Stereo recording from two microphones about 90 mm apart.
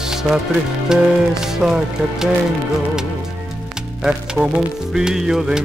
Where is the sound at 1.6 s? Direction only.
5° right (ahead or behind).